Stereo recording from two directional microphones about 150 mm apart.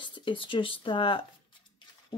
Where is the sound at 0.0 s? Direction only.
35° left (ahead or behind).